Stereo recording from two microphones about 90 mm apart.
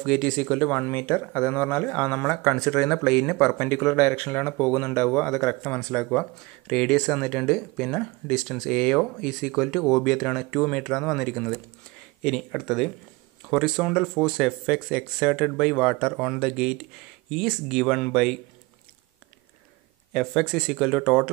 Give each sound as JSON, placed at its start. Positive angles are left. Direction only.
{"t": 0.0, "sound": "speech", "side_deg": 0}
{"t": 3.5, "sound": "speech", "side_deg": 25}
{"t": 4.6, "sound": "speech", "side_deg": 30}
{"t": 5.1, "sound": "speech", "side_deg": 10}
{"t": 20.1, "sound": "speech", "side_deg": 0}